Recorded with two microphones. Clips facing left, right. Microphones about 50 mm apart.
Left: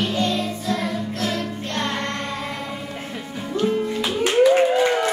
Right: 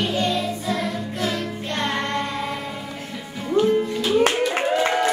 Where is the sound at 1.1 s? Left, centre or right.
Centre.